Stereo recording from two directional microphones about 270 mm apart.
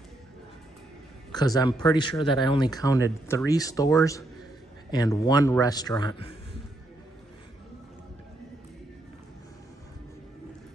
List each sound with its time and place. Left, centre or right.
1.3 s speech: centre